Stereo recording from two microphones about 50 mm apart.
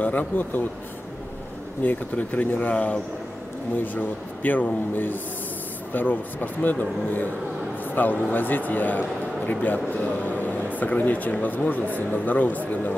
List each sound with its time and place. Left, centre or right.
0.0 s a man's voice: left
1.8 s a man's voice: left
3.7 s a man's voice: left